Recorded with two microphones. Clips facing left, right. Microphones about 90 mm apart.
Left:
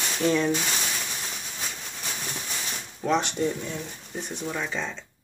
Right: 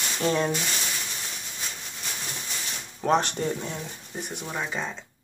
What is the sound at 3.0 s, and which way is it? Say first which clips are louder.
Speech: right 1 dB; 45° right (ahead or behind).